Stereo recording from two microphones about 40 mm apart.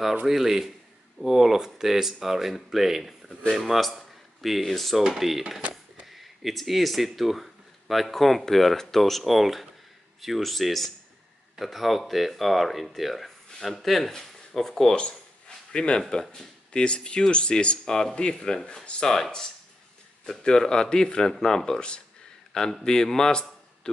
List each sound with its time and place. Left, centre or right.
0.3 s speech: centre
5.6 s frog: right
6.0 s speech: centre
15.0 s a sound: left
16.1 s speech: centre
20.4 s speech: centre
22.5 s speech: centre